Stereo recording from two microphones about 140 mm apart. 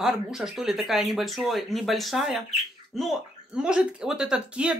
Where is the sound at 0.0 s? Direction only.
5° right (ahead or behind).